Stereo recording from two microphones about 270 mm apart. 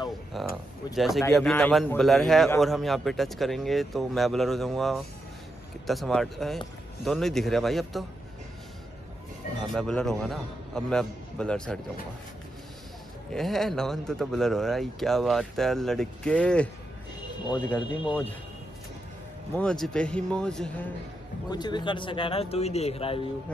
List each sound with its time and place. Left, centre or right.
0.3 s a man's voice: centre
9.6 s a man's voice: centre
13.3 s a man's voice: centre
17.5 s speech: centre
18.0 s a man's voice: centre
19.5 s a man's voice: centre
21.5 s speech: centre